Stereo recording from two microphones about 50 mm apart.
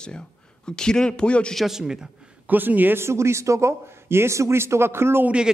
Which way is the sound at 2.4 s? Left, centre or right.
Right.